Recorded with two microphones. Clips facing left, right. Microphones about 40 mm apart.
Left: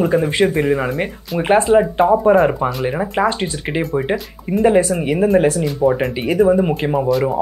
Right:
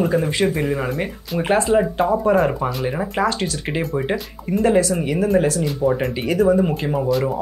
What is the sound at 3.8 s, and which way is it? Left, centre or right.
Speech, centre.